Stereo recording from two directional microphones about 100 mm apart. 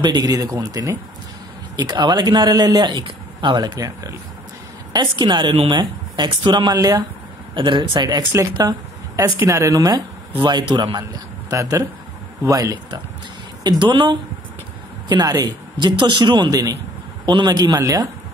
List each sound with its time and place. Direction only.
0.0 s a man's voice: 45° right (ahead or behind)
1.8 s a man's voice: 45° right (ahead or behind)
4.9 s a man's voice: 50° right (ahead or behind)
7.5 s a man's voice: 50° right (ahead or behind); by 10.0 s 35° right (ahead or behind)
10.4 s a man's voice: 50° right (ahead or behind)
13.7 s a man's voice: 50° right (ahead or behind)